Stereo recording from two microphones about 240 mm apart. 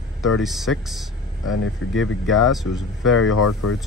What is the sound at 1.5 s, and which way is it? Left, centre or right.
Speech, left.